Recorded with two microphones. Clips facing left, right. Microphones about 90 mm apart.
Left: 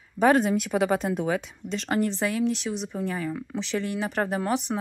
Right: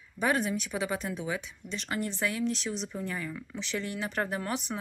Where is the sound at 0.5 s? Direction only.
60° left (ahead or behind).